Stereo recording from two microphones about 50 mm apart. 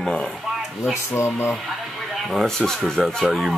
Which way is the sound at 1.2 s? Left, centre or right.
Left.